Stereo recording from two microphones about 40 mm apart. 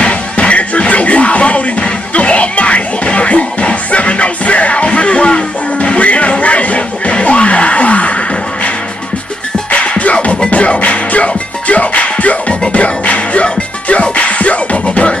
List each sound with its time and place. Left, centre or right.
0.0 s music: left
9.8 s music: left